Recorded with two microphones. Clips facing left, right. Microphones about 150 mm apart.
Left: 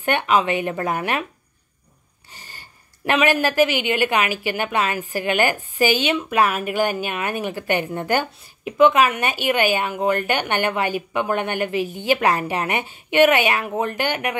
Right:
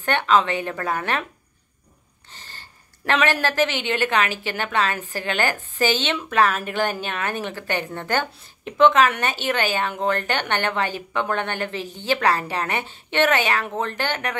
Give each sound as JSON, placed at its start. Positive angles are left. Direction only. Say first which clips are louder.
{"t": 0.0, "sound": "a woman's voice", "louder": "even", "side_deg": 15}
{"t": 2.3, "sound": "a woman's voice", "louder": "left 1 dB", "side_deg": 10}